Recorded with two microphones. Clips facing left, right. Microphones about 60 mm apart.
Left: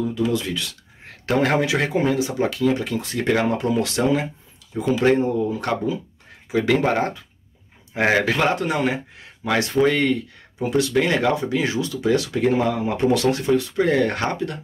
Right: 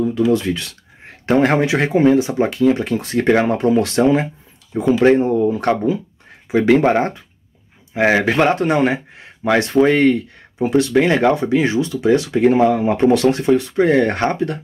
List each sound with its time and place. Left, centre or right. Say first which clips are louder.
0.3 s speech: right 7 dB; right
1.2 s speech: right 5 dB; right
7.9 s speech: right 4 dB; centre
8.3 s speech: right 5 dB; right